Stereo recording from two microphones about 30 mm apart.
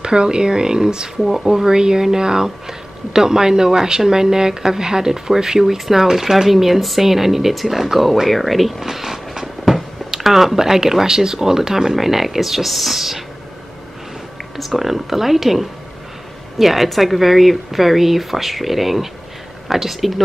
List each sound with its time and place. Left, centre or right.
0.0 s a woman's voice: right
1.2 s speech: centre
1.7 s a woman's voice: right; by 8.8 s centre
8.8 s a sound: centre
10.1 s speech: centre
14.6 s speech: centre